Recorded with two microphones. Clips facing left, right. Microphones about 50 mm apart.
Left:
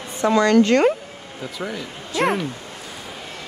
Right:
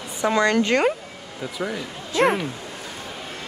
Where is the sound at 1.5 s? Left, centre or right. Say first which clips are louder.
Right 1 dB; centre.